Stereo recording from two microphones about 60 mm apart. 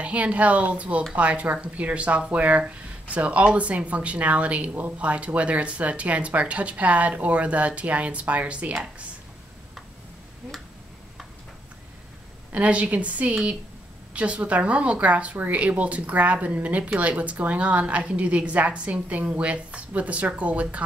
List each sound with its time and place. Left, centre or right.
0.0 s speech: right
12.5 s a woman's voice: centre